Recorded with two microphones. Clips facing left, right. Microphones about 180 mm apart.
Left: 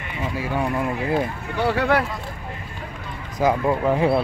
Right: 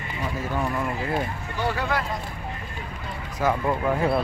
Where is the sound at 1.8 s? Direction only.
65° left (ahead or behind).